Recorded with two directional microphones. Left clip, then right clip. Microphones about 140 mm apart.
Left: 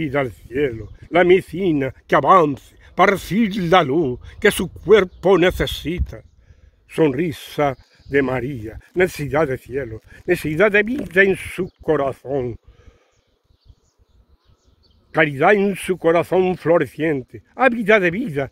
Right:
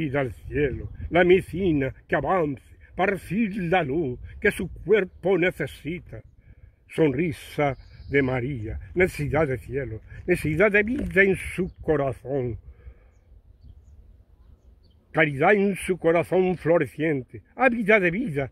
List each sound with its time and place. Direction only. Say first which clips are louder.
0.0 s speech: left 5 dB; 20° left (ahead or behind)
15.0 s speech: left 5 dB; 30° left (ahead or behind)